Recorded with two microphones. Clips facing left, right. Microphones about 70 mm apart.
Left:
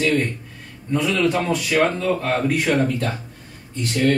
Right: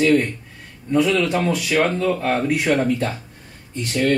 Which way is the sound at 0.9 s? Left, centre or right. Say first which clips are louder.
Right 2 dB; centre.